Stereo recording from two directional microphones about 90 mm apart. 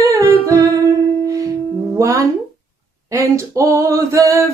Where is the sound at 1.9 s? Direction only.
35° right (ahead or behind).